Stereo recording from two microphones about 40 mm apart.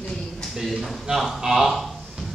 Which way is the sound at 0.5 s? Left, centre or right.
Centre.